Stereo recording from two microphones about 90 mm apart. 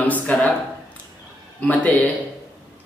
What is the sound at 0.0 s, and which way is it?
Speech, 15° left (ahead or behind).